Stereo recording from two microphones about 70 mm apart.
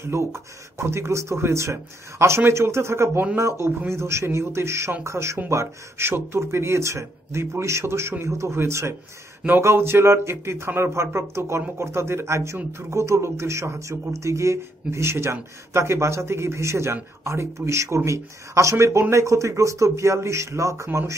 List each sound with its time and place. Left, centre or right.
0.0 s a man's voice: right